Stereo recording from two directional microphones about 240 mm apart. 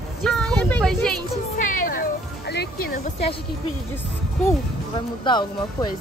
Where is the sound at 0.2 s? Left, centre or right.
Centre.